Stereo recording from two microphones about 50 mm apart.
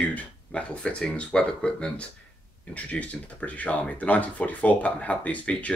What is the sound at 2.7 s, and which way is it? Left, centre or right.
Speech, left.